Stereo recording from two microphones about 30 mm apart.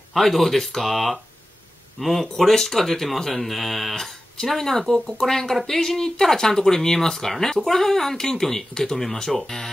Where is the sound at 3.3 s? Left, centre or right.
Centre.